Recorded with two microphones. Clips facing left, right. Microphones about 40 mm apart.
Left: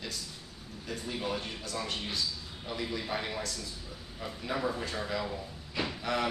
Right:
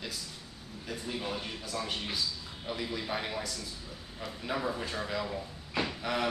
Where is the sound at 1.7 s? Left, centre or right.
Centre.